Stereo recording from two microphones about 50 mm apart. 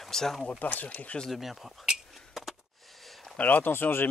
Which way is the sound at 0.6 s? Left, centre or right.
Left.